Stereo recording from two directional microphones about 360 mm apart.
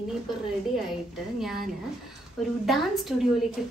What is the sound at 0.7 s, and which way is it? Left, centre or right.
Speech, centre.